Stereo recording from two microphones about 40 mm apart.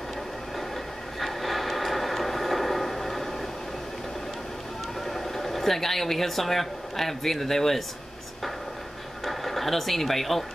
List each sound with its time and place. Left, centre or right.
1.2 s train: centre
5.0 s speech: centre
9.2 s speech: centre